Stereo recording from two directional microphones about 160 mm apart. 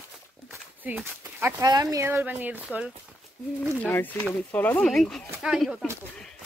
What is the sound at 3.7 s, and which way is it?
Speech, 15° left (ahead or behind).